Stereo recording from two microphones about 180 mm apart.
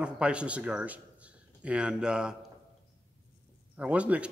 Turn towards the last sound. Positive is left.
turn(degrees=-5)  # may be behind; listen again after turning